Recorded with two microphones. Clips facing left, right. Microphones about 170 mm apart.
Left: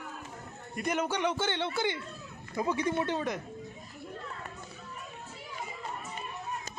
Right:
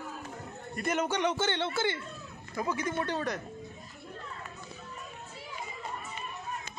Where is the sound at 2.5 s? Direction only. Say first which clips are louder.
Left 2 dB; 25° left (ahead or behind).